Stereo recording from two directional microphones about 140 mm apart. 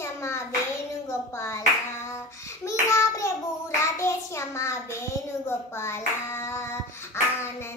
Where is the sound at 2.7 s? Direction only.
20° left (ahead or behind).